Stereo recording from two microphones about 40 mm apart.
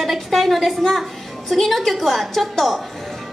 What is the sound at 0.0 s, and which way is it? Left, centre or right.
A woman's voice, centre.